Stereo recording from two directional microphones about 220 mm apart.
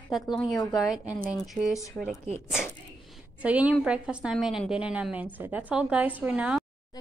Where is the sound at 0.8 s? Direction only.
5° right (ahead or behind).